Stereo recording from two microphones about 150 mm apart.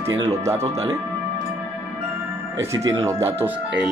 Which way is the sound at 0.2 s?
25° right (ahead or behind).